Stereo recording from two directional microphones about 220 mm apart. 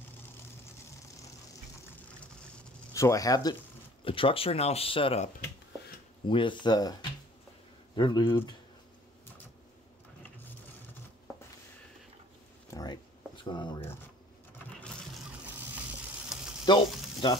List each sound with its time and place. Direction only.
2.9 s speech: 15° left (ahead or behind)
12.7 s a sound: 20° left (ahead or behind)
16.3 s frying: centre (ahead or behind)
16.6 s frying: 20° left (ahead or behind)